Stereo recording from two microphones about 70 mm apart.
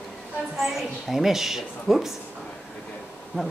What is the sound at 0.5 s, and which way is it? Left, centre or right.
A woman's voice, centre.